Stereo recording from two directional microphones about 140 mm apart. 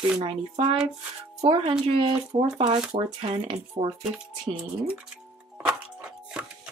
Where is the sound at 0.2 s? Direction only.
45° right (ahead or behind).